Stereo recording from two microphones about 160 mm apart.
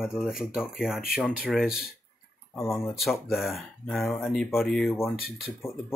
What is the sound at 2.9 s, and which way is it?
Speech, centre (ahead or behind).